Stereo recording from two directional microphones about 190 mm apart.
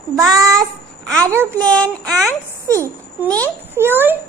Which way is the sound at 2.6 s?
15° right (ahead or behind).